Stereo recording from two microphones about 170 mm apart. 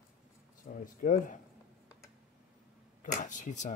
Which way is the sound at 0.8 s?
50° left (ahead or behind).